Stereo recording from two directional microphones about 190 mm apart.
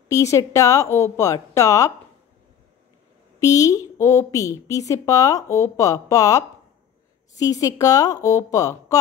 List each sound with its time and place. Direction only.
0.1 s a woman's voice: 15° left (ahead or behind)
3.3 s a woman's voice: 15° left (ahead or behind)